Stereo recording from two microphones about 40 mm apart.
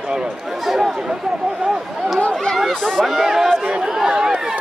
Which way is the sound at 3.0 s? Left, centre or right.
Centre.